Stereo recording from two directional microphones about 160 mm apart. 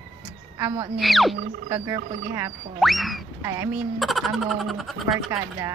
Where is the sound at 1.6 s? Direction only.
20° right (ahead or behind).